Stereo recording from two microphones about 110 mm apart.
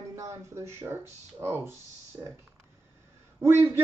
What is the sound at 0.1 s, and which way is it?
Speech, 25° right (ahead or behind).